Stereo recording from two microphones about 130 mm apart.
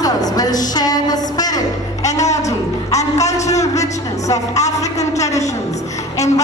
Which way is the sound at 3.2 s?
60° left (ahead or behind).